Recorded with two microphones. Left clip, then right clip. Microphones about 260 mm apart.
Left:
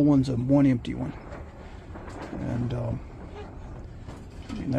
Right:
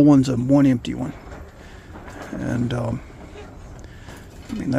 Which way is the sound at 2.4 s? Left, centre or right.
Right.